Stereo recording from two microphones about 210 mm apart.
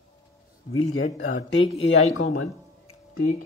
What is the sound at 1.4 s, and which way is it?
Speech, 65° left (ahead or behind).